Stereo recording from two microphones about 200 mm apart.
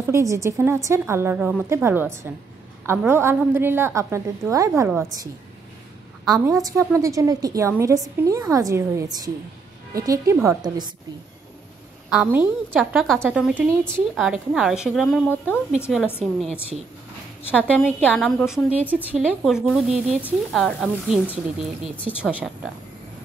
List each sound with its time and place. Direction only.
0.0 s a woman's voice: 15° right (ahead or behind)
6.4 s a woman's voice: 15° right (ahead or behind)
12.1 s a woman's voice: 10° right (ahead or behind)
15.2 s a woman's voice: 10° left (ahead or behind)
17.5 s a woman's voice: 5° left (ahead or behind)
22.3 s a woman's voice: 5° right (ahead or behind)